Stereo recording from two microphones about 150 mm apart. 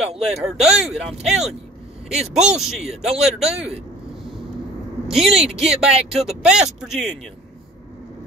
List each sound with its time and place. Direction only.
0.2 s speech: 5° right (ahead or behind)
5.0 s vehicle: 5° right (ahead or behind)
5.4 s speech: 5° right (ahead or behind)